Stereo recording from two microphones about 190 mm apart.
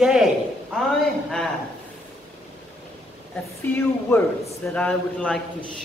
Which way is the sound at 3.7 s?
10° left (ahead or behind).